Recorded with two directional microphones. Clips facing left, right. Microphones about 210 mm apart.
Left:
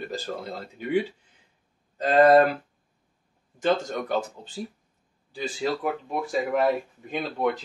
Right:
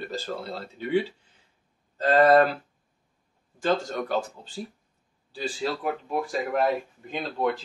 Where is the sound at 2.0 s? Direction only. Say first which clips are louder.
Left 1 dB; 15° left (ahead or behind).